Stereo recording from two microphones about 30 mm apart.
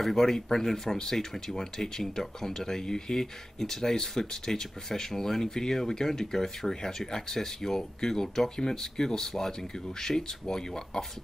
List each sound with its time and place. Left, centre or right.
0.0 s speech: centre